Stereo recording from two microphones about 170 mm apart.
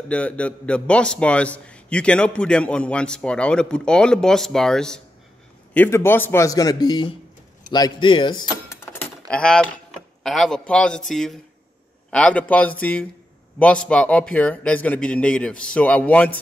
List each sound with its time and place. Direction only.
0.1 s a man's voice: 10° left (ahead or behind); by 8.7 s 25° left (ahead or behind)
8.8 s keys jangling: 10° left (ahead or behind)
9.3 s a man's voice: 5° left (ahead or behind)